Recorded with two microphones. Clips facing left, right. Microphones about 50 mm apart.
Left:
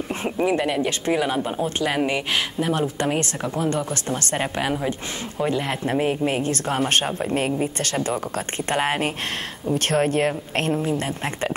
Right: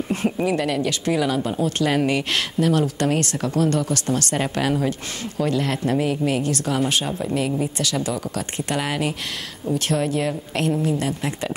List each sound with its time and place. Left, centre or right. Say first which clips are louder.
0.1 s a woman's voice: even; centre